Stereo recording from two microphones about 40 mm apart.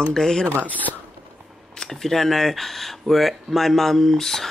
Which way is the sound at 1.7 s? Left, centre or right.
Centre.